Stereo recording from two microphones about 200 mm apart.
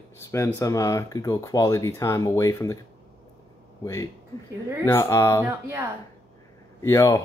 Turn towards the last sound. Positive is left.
turn(degrees=15)  # may be behind; listen again after turning